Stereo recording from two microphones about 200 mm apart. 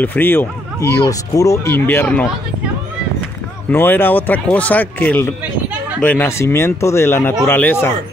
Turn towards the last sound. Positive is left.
turn(degrees=10)  # may be behind; listen again after turning